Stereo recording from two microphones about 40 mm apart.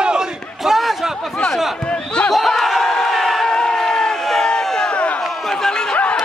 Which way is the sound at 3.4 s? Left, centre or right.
Centre.